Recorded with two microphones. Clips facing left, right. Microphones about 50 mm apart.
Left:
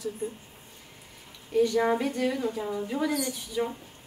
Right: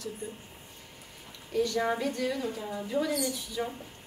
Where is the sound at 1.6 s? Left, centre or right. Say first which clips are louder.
Left 4 dB; centre.